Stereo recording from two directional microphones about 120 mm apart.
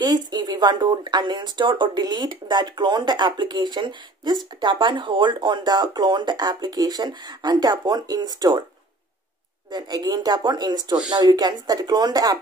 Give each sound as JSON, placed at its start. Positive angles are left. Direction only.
{"t": 0.0, "sound": "speech", "side_deg": -35}
{"t": 9.7, "sound": "speech", "side_deg": -35}